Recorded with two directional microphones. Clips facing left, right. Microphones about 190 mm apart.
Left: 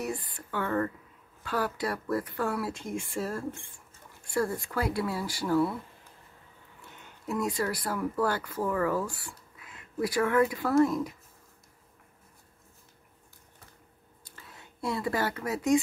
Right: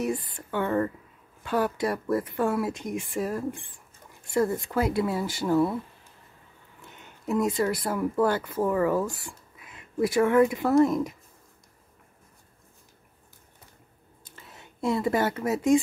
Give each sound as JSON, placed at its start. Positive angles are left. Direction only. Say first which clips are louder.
{"t": 0.0, "sound": "speech", "louder": "right 5 dB", "side_deg": -25}
{"t": 7.2, "sound": "speech", "louder": "right 5 dB", "side_deg": -20}
{"t": 14.2, "sound": "a sound", "louder": "right 2 dB", "side_deg": -20}